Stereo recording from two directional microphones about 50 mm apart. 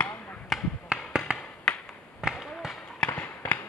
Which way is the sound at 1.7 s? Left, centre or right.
Centre.